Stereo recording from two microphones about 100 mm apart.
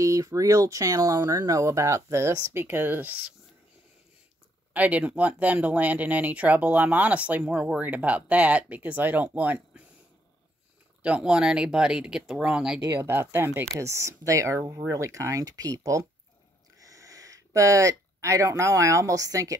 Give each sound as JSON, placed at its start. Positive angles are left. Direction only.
{"t": 0.0, "sound": "speech", "side_deg": -35}
{"t": 4.7, "sound": "speech", "side_deg": -15}
{"t": 11.0, "sound": "speech", "side_deg": -10}
{"t": 13.0, "sound": "speech", "side_deg": -20}